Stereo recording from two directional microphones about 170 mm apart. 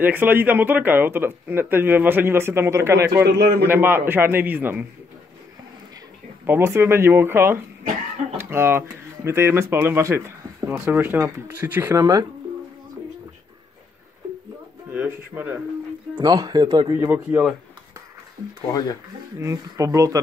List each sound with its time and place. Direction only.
0.0 s speech: 10° right (ahead or behind)
3.3 s a man's voice: 70° right (ahead or behind)
3.6 s speech: 10° right (ahead or behind)
6.4 s speech: 15° right (ahead or behind)
14.9 s speech: 10° right (ahead or behind)
16.2 s speech: 25° right (ahead or behind)
18.7 s speech: 25° left (ahead or behind)
19.3 s speech: 20° right (ahead or behind)